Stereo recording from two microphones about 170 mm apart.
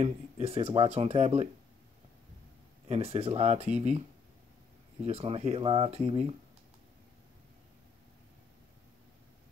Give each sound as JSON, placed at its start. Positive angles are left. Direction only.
{"t": 0.0, "sound": "speech", "side_deg": -35}
{"t": 2.9, "sound": "speech", "side_deg": -35}
{"t": 5.0, "sound": "speech", "side_deg": -35}